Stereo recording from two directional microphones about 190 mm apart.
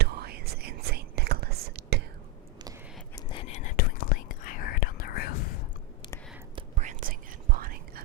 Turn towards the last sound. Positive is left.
turn(degrees=-50)  # may be behind; listen again after turning